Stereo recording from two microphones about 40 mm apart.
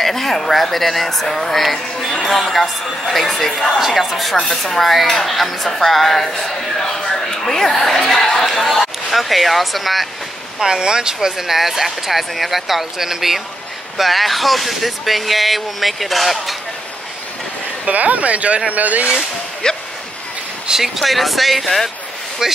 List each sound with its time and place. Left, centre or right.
0.0 s speech: centre
4.4 s speech: centre
4.8 s speech: centre
10.6 s speech: centre
17.8 s speech: right
19.6 s speech: centre
20.8 s speech: centre
22.4 s speech: centre